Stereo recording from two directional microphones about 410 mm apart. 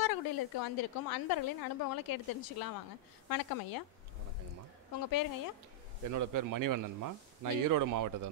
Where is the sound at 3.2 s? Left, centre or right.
Left.